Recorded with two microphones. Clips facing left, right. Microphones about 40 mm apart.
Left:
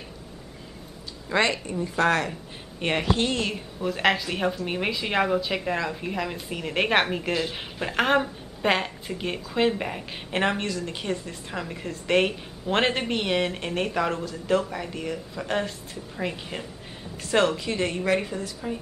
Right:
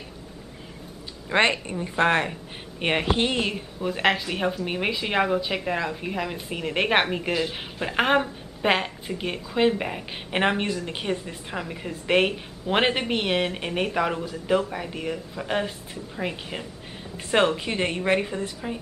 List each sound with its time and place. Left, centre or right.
1.3 s a woman's voice: right
3.5 s a woman's voice: centre
10.3 s a woman's voice: right
17.3 s a woman's voice: right